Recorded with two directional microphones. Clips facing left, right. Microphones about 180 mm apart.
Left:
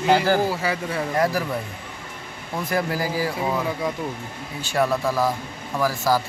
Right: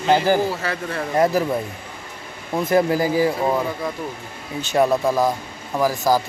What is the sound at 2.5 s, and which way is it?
Speech, 20° right (ahead or behind).